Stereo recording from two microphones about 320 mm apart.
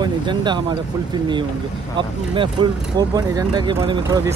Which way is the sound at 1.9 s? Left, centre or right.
Centre.